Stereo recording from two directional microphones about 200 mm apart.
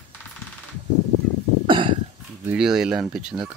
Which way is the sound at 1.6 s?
25° right (ahead or behind).